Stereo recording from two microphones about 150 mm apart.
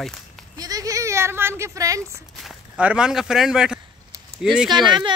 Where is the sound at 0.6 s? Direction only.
25° right (ahead or behind).